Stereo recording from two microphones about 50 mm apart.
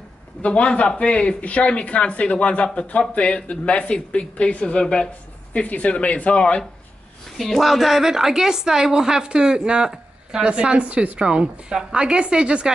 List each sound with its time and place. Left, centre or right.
0.4 s speech: left
7.3 s a woman's voice: centre; by 12.7 s right